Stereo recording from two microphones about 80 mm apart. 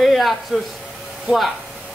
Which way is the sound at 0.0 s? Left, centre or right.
Centre.